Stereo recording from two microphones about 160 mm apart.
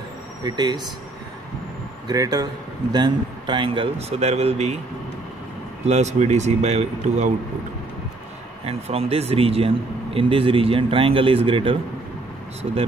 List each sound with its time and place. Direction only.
0.4 s speech: 25° right (ahead or behind)
2.0 s a man's voice: 25° right (ahead or behind); by 4.7 s 40° right (ahead or behind)
5.9 s speech: 45° right (ahead or behind)
8.6 s a man's voice: 40° right (ahead or behind)